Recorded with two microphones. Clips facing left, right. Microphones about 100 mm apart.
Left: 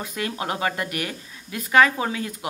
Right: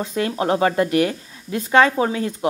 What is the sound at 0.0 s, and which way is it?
Speech, 30° right (ahead or behind).